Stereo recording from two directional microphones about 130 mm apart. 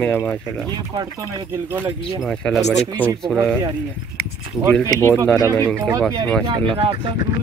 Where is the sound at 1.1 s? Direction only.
20° right (ahead or behind).